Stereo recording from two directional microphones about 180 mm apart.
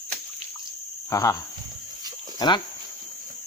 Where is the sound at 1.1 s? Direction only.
20° left (ahead or behind).